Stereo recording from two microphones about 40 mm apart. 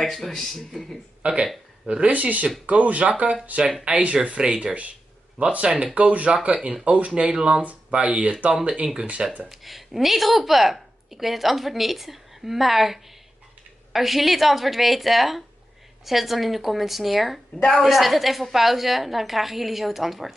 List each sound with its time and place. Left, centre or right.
0.0 s a woman's voice: centre
1.2 s speech: right
7.1 s speech: right
9.5 s a woman's voice: centre